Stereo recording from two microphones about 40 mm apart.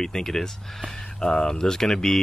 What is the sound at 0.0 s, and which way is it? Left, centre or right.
Speech, centre.